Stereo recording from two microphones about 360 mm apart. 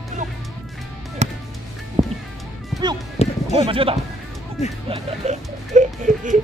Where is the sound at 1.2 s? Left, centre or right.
Centre.